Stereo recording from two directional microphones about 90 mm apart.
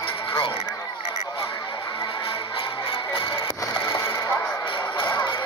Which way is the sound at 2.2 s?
70° left (ahead or behind).